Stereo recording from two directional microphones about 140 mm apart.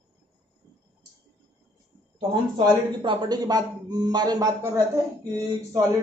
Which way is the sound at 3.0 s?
30° right (ahead or behind).